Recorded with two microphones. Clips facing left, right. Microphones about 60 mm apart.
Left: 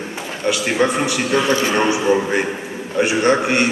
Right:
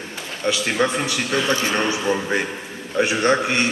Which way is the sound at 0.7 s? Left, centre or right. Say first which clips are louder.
Left 3 dB; centre.